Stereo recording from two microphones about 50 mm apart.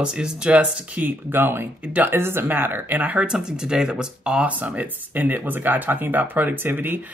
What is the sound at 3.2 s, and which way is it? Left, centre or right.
Speech, centre.